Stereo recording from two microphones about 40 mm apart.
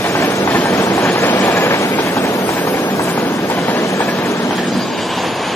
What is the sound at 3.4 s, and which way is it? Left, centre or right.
Train, left.